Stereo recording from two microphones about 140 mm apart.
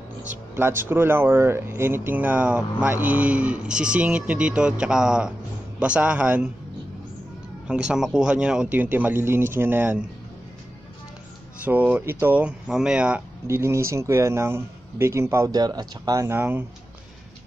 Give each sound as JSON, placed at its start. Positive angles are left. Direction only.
{"t": 0.3, "sound": "speech", "side_deg": -15}
{"t": 7.6, "sound": "speech", "side_deg": -5}
{"t": 11.6, "sound": "speech", "side_deg": -10}
{"t": 13.5, "sound": "speech", "side_deg": -20}
{"t": 16.3, "sound": "speech", "side_deg": -15}